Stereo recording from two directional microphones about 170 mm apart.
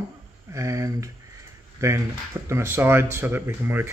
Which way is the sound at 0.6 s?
20° right (ahead or behind).